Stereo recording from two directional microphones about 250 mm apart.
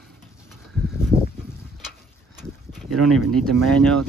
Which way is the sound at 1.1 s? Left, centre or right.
Centre.